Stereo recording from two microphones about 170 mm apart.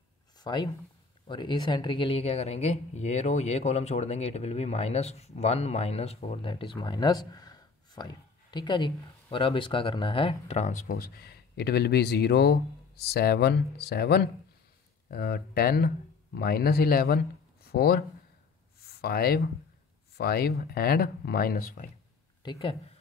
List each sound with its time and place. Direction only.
0.4 s speech: 25° left (ahead or behind); by 21.9 s 55° left (ahead or behind)
22.4 s speech: 30° left (ahead or behind)